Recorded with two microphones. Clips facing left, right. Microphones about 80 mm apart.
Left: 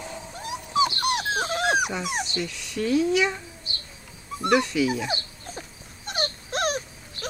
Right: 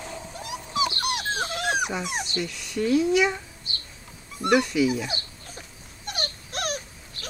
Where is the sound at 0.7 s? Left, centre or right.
Left.